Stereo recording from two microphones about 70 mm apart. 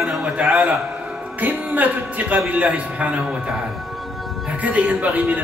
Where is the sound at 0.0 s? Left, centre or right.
Centre.